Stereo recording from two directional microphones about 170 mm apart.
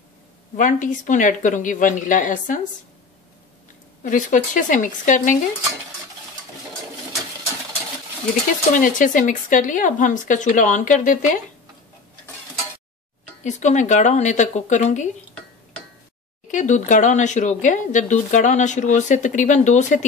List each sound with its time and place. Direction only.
0.6 s speech: 50° left (ahead or behind)
4.0 s speech: 50° left (ahead or behind)
8.7 s speech: 50° left (ahead or behind)
13.4 s speech: 45° left (ahead or behind)
16.4 s speech: 45° left (ahead or behind)